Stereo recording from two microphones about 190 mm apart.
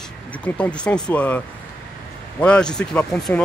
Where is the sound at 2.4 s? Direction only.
5° left (ahead or behind).